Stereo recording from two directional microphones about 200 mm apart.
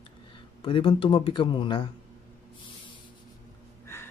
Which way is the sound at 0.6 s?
25° left (ahead or behind).